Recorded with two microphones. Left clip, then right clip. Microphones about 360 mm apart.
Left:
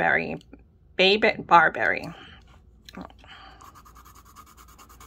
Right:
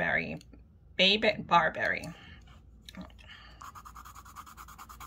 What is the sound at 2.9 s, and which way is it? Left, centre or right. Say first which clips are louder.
Whispering: left 6 dB; centre.